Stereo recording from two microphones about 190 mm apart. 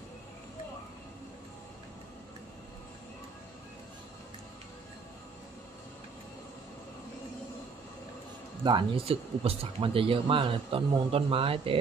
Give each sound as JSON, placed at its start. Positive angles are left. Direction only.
{"t": 8.6, "sound": "speech", "side_deg": -25}